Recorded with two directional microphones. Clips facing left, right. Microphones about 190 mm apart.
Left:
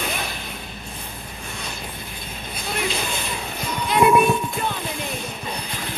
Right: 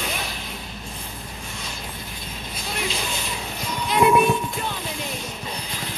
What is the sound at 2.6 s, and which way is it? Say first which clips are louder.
Music: left 3 dB; 55° left (ahead or behind).